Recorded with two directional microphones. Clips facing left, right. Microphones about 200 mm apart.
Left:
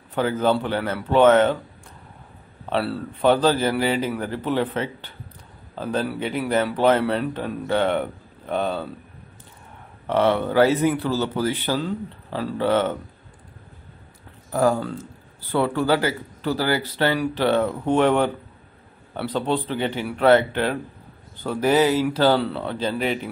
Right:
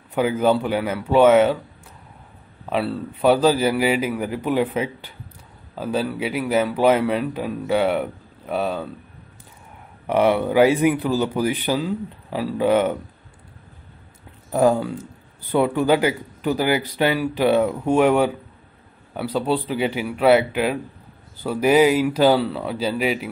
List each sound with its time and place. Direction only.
0.1 s speech: 10° right (ahead or behind)
2.7 s speech: 5° left (ahead or behind)
3.2 s speech: 10° right (ahead or behind)
10.0 s speech: 10° right (ahead or behind)
14.5 s speech: 20° right (ahead or behind)